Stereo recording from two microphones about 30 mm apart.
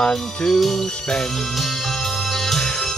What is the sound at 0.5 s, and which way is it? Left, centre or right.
Music, centre.